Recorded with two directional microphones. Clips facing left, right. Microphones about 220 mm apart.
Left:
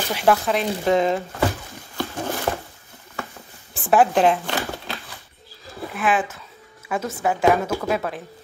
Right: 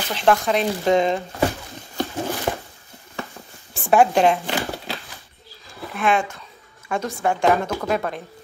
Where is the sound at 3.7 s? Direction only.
Centre (ahead or behind).